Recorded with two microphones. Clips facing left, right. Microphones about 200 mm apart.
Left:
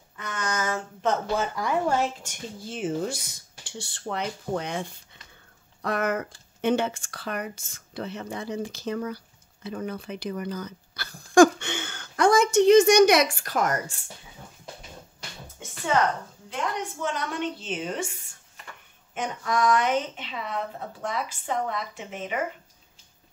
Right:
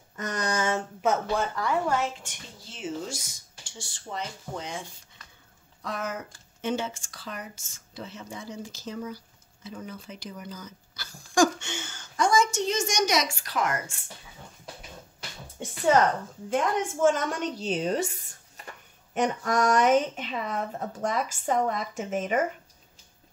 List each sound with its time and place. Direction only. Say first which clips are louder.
0.1 s a sound: right 2 dB; 40° right (ahead or behind)
1.0 s speech: left 1 dB; centre (ahead or behind)
2.2 s speech: left 9 dB; 55° left (ahead or behind); by 14.0 s 40° left (ahead or behind)
15.4 s music: right 7 dB; 35° right (ahead or behind)
16.4 s a woman's voice: right 5 dB; 50° right (ahead or behind)